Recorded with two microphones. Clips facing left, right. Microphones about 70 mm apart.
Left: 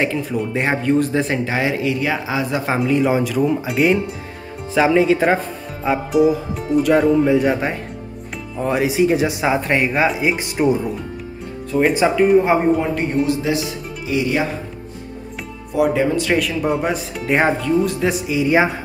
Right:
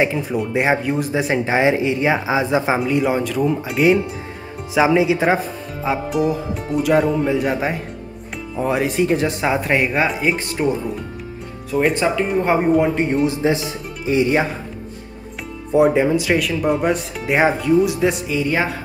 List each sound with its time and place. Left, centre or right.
0.0 s speech: centre
1.4 s speech: right
2.7 s speech: centre
11.9 s speech: centre
12.9 s speech: right
15.7 s speech: right
16.3 s speech: centre